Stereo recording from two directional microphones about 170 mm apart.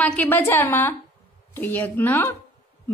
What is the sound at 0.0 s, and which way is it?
A woman's voice, 10° left (ahead or behind).